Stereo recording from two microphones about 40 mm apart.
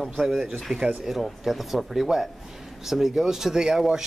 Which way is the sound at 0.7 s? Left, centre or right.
Right.